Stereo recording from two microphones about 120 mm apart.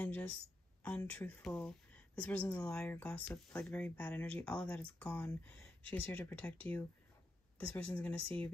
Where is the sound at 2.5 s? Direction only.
25° left (ahead or behind).